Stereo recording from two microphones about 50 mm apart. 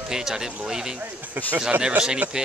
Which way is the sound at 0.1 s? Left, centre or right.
Centre.